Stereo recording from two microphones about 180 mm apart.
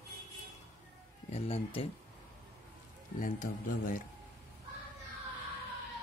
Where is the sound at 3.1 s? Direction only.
50° left (ahead or behind).